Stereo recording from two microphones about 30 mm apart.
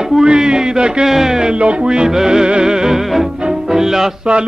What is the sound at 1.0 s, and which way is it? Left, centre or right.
Speech, centre.